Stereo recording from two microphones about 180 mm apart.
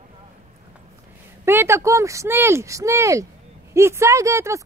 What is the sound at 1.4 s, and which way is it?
Speech, 15° right (ahead or behind).